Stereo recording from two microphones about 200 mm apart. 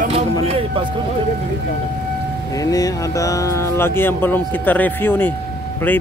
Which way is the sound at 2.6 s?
15° left (ahead or behind).